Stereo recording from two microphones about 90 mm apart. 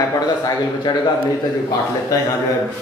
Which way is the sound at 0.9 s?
50° left (ahead or behind).